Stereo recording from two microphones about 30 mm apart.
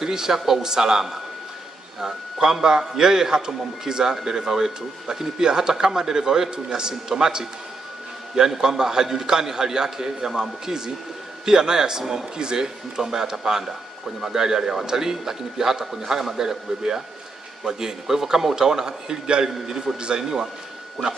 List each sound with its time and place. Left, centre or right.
0.0 s a man's voice: centre
8.4 s a man's voice: centre
8.6 s a man's voice: right